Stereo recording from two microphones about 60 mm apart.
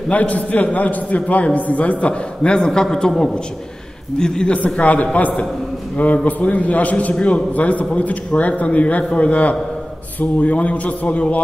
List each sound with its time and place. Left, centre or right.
0.1 s a man's voice: left